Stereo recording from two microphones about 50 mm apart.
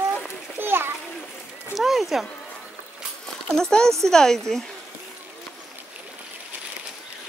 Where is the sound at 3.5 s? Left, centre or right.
Centre.